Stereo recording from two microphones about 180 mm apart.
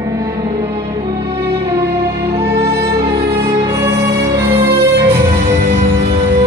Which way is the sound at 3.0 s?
30° right (ahead or behind).